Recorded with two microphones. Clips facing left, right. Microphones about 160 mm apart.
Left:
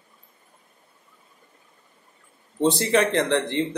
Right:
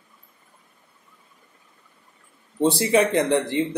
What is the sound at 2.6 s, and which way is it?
Speech, 10° right (ahead or behind).